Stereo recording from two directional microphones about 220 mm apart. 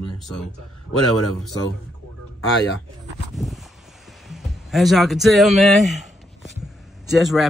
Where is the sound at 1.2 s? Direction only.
90° left.